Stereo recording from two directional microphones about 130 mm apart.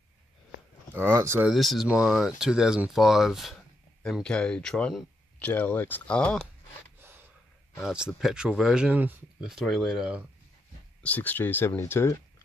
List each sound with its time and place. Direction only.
0.9 s speech: 20° right (ahead or behind)
1.5 s speech: centre (ahead or behind)
7.8 s speech: 5° right (ahead or behind)
11.0 s speech: 10° left (ahead or behind)